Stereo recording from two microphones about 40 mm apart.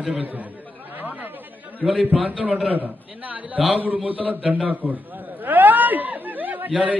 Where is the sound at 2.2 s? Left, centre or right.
Right.